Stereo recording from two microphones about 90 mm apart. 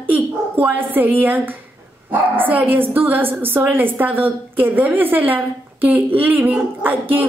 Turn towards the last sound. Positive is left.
turn(degrees=-20)  # may be behind; listen again after turning